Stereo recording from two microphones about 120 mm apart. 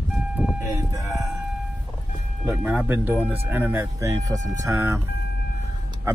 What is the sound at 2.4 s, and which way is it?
Speech, 15° right (ahead or behind).